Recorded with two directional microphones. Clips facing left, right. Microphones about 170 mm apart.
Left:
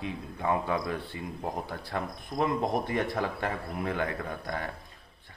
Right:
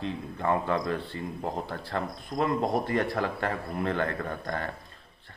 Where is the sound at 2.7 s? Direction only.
15° left (ahead or behind).